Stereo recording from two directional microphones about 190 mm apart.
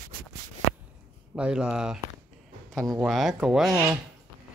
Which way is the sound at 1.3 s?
5° right (ahead or behind).